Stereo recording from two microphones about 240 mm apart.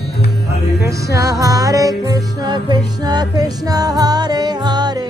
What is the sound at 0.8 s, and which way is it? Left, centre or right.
Music, centre.